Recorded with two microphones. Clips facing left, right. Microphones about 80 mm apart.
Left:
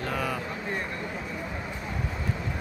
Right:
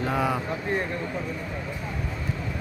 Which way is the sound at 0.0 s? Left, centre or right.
Centre.